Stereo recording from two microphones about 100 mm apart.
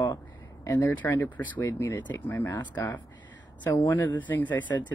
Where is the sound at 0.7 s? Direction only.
25° left (ahead or behind).